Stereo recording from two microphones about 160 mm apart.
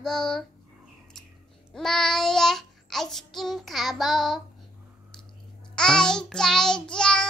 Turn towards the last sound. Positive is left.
turn(degrees=5)  # may be behind; listen again after turning